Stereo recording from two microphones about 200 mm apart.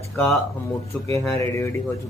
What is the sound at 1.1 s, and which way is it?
Speech, 15° left (ahead or behind).